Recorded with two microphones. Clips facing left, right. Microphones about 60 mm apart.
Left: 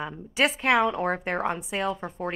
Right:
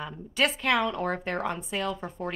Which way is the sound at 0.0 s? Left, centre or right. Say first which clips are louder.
Left 2 dB; centre.